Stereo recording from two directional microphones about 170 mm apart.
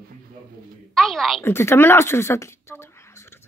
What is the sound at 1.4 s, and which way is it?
Speech, 15° left (ahead or behind).